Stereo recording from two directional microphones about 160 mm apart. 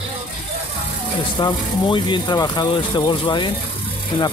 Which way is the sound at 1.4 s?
25° left (ahead or behind).